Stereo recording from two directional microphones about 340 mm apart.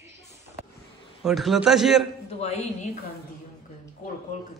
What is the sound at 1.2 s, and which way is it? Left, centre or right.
Speech, centre.